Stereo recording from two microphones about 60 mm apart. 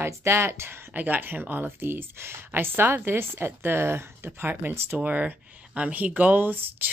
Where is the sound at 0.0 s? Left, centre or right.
Right.